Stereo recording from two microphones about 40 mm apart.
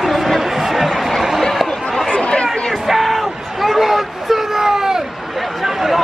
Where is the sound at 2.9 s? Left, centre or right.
Centre.